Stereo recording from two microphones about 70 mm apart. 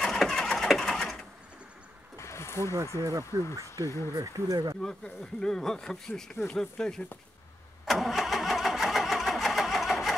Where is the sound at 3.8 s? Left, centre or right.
Right.